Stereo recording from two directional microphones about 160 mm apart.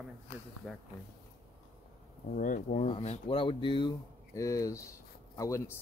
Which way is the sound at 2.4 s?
60° left (ahead or behind).